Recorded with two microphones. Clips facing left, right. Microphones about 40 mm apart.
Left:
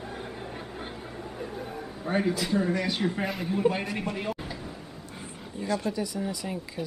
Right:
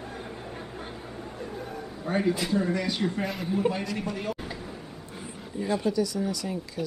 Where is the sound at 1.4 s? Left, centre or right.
Centre.